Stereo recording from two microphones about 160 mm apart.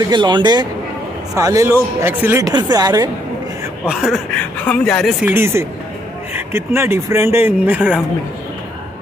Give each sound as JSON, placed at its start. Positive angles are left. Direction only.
{"t": 0.0, "sound": "a woman's voice", "side_deg": -25}
{"t": 3.8, "sound": "speech", "side_deg": 0}
{"t": 5.2, "sound": "speech", "side_deg": -15}